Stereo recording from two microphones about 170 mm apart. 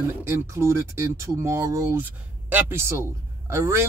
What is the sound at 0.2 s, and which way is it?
Speech, 15° right (ahead or behind).